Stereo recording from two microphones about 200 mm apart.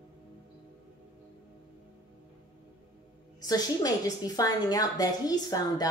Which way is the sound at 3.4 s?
20° left (ahead or behind).